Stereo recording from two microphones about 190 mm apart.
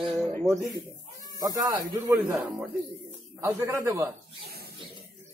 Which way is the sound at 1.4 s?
20° right (ahead or behind).